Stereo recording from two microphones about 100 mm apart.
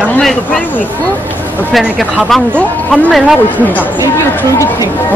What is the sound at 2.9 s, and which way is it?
Speech, centre (ahead or behind).